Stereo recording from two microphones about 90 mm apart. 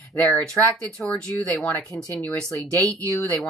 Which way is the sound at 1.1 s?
10° left (ahead or behind).